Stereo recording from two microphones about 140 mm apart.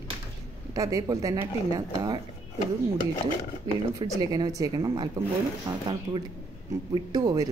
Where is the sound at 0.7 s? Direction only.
25° right (ahead or behind).